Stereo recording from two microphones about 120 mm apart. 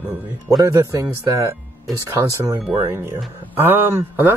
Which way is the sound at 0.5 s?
30° right (ahead or behind).